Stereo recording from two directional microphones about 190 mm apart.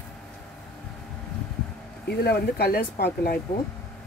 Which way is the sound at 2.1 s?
60° left (ahead or behind).